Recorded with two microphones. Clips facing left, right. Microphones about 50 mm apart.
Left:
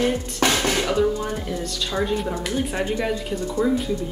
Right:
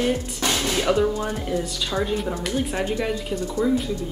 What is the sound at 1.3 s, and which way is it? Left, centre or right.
Speech, centre.